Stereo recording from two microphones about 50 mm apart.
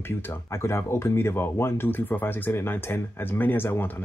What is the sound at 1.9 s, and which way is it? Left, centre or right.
Speech, left.